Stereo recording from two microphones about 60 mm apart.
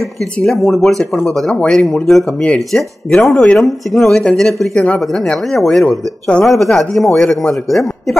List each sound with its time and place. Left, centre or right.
0.2 s speech: centre
4.7 s speech: left
5.0 s speech: centre
5.9 s speech: centre
6.4 s speech: centre